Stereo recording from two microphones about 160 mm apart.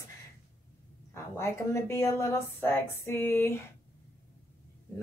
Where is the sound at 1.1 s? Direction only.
15° left (ahead or behind).